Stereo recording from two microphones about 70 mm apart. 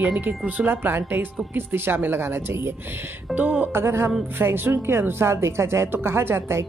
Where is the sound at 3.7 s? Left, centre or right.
Right.